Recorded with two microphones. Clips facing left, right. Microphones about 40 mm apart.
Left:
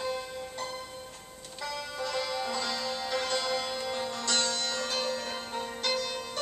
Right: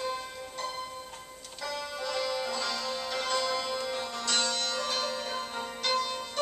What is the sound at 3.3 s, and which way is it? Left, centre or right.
Music, centre.